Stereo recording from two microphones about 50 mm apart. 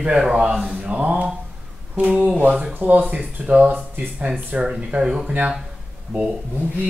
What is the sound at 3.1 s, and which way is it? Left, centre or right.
A man's voice, right.